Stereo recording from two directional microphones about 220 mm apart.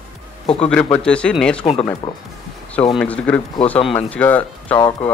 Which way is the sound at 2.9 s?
5° left (ahead or behind).